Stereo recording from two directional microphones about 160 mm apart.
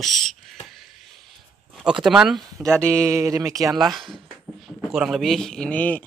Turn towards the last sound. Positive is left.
turn(degrees=10)  # may be behind; listen again after turning